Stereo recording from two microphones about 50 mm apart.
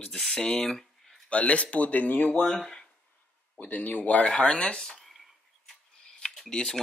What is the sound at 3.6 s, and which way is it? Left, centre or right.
Speech, left.